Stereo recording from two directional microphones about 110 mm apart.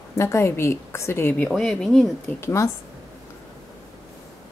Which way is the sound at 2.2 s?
25° left (ahead or behind).